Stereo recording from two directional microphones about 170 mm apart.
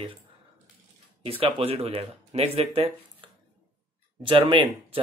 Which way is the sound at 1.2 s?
35° right (ahead or behind).